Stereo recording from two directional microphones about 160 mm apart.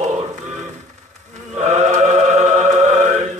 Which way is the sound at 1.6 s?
50° right (ahead or behind).